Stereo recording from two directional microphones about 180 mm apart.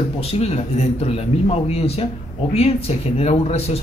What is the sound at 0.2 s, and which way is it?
A man's voice, 35° left (ahead or behind).